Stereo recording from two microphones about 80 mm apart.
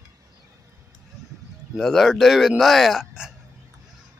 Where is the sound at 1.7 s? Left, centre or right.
Centre.